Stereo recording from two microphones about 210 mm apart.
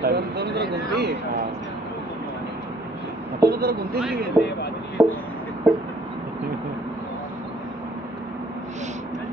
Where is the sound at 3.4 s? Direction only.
45° right (ahead or behind).